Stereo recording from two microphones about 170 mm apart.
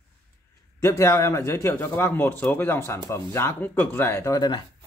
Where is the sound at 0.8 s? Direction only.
20° left (ahead or behind).